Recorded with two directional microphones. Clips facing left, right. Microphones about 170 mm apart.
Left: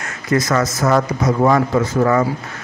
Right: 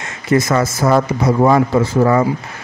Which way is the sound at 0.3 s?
25° right (ahead or behind).